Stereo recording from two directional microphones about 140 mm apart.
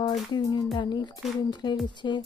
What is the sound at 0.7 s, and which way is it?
Speech, 35° left (ahead or behind).